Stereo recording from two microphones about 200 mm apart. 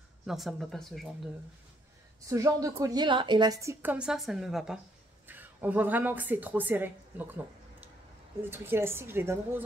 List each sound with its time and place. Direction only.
0.3 s speech: centre (ahead or behind)
2.2 s a woman's voice: 15° right (ahead or behind)